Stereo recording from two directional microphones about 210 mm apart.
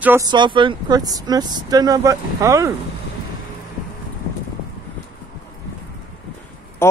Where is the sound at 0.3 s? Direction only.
20° right (ahead or behind).